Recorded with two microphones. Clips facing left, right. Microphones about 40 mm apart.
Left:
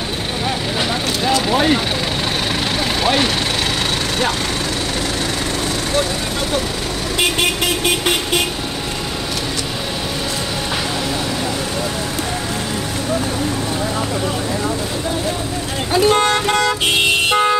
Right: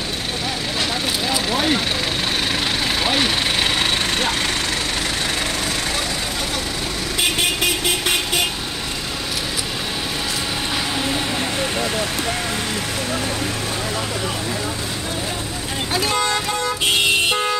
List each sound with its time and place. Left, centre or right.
1.5 s speech: centre
3.0 s vehicle: centre
16.1 s speech: left
17.3 s vehicle: centre